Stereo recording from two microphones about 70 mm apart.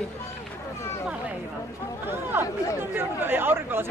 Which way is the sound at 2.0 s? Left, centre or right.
Right.